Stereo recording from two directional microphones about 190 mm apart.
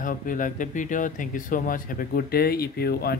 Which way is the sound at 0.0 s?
45° left (ahead or behind).